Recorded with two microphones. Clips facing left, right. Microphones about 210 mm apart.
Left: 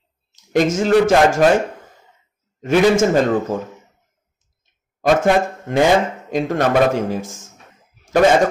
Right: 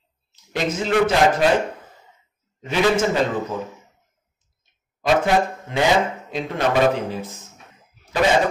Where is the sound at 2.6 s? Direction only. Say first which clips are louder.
Left 5 dB; 50° left (ahead or behind).